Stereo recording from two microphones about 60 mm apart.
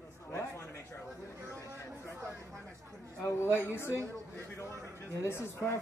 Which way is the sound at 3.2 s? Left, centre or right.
Left.